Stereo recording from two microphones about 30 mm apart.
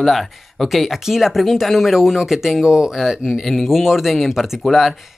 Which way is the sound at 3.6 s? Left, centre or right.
Centre.